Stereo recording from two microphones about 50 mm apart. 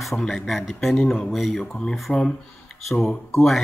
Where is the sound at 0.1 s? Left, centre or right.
Centre.